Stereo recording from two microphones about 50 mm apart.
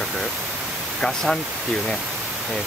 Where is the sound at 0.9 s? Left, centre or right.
Centre.